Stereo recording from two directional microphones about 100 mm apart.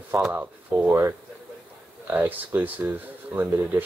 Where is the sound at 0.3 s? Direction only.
20° right (ahead or behind).